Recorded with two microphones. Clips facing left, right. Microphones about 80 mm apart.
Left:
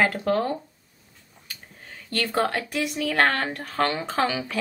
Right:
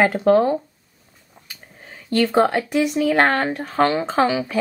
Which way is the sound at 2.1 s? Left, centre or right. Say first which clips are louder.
Right 8 dB; centre.